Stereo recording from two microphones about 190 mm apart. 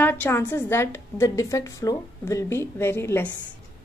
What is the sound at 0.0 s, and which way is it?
A woman's voice, 10° left (ahead or behind).